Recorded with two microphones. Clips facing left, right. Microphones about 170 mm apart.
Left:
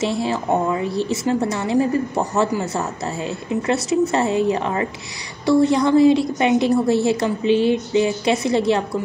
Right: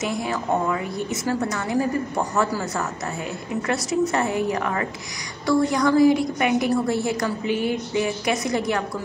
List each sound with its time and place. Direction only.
0.0 s a woman's voice: 30° left (ahead or behind)